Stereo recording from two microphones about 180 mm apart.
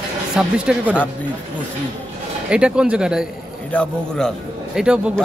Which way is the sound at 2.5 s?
5° right (ahead or behind).